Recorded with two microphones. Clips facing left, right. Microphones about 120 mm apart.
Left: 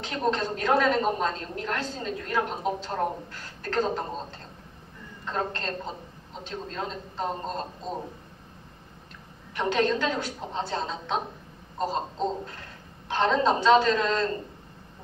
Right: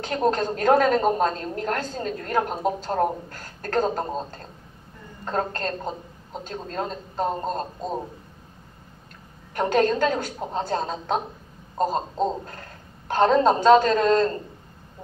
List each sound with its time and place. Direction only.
0.0 s a woman's voice: 45° right (ahead or behind)
9.6 s a woman's voice: 45° right (ahead or behind)